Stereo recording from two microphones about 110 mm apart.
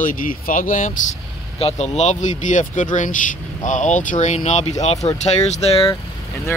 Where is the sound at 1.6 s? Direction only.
75° left (ahead or behind); by 2.2 s 90° left.